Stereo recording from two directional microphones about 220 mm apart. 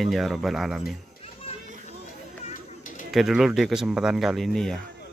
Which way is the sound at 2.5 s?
35° left (ahead or behind).